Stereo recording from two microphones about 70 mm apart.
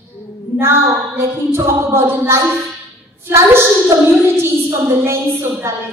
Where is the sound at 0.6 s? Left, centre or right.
Right.